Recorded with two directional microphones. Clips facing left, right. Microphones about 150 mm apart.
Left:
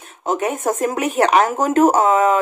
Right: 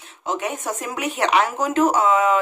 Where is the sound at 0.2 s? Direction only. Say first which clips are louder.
Left 6 dB; 45° left (ahead or behind).